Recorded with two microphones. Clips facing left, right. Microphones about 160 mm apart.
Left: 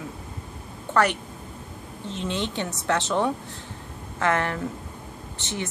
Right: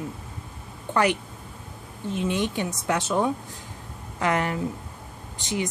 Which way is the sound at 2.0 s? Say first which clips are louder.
Right 3 dB; 10° right (ahead or behind).